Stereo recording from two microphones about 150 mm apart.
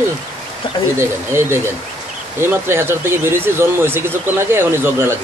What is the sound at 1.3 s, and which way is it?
Speech, 15° right (ahead or behind).